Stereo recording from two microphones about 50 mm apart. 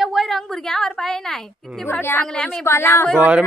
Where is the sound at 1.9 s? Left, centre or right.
Left.